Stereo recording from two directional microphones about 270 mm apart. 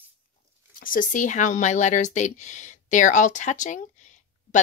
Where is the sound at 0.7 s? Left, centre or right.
Left.